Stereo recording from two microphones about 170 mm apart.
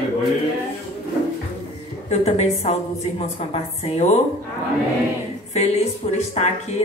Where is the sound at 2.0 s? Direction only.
40° left (ahead or behind).